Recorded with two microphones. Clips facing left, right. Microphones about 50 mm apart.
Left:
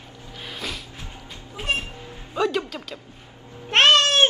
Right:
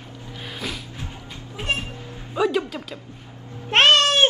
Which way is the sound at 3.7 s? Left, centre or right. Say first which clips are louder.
Right 1 dB; centre.